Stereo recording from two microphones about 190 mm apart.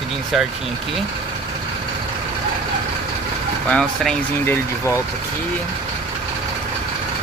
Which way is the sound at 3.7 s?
5° left (ahead or behind).